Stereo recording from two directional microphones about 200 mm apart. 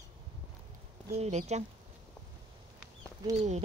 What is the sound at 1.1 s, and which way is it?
Speech, 35° right (ahead or behind).